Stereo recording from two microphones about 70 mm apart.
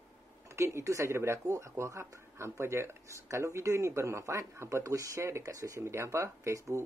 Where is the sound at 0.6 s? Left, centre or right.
Right.